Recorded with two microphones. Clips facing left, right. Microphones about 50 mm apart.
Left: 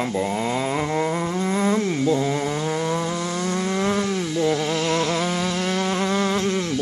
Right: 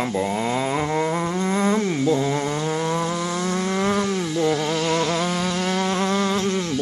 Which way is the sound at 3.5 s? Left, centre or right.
Centre.